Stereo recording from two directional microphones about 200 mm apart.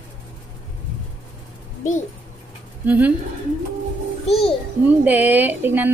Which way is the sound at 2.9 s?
5° right (ahead or behind).